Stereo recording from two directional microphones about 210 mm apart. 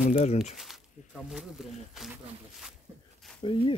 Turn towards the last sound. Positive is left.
turn(degrees=25)  # may be behind; listen again after turning